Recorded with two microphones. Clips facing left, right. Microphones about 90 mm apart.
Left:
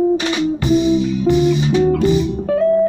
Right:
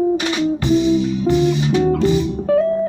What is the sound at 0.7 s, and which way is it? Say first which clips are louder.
Music: left 1 dB; 10° left (ahead or behind).